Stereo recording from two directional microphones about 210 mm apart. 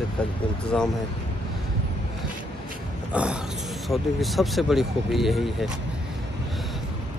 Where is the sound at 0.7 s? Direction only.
5° left (ahead or behind).